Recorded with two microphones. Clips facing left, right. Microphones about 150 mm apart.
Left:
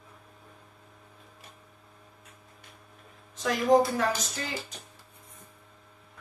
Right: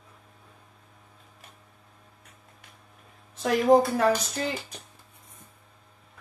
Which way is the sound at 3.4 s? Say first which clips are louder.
Right 3 dB; 50° right (ahead or behind).